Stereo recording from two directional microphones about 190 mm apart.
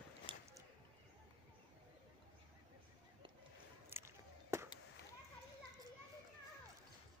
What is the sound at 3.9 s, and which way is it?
Chop, 15° right (ahead or behind).